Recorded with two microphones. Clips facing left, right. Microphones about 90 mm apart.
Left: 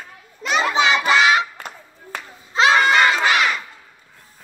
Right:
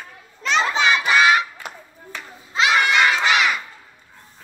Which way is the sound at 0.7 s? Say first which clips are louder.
Left 4 dB; 20° left (ahead or behind).